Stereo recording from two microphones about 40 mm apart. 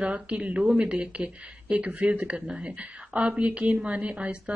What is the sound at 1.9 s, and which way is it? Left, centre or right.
Speech, right.